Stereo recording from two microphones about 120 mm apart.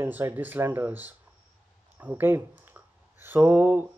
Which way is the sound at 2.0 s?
15° right (ahead or behind).